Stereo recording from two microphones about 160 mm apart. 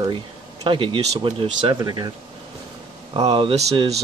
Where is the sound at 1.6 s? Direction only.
25° right (ahead or behind).